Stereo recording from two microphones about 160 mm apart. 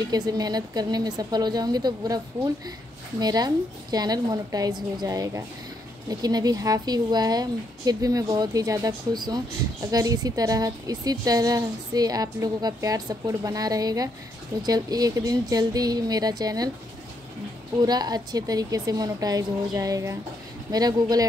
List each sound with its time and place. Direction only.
0.1 s a woman's voice: 25° right (ahead or behind)
17.8 s a woman's voice: 25° right (ahead or behind)